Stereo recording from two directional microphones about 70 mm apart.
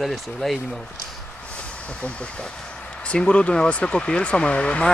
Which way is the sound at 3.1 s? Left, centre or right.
Centre.